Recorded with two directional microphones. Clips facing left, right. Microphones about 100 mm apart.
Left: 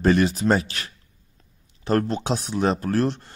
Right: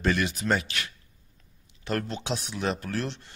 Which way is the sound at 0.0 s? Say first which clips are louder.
Left 8 dB; 35° left (ahead or behind).